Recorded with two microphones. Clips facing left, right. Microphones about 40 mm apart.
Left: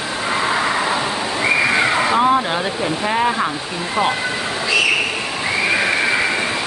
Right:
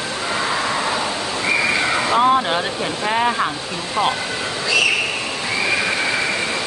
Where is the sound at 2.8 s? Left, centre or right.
Centre.